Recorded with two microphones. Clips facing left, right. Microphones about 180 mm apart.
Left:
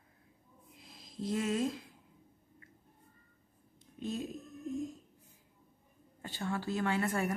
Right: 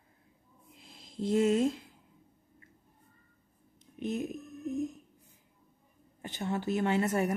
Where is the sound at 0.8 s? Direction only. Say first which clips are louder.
Right 5 dB; 25° right (ahead or behind).